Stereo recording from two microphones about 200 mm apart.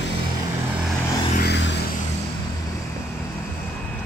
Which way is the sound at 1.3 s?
55° left (ahead or behind).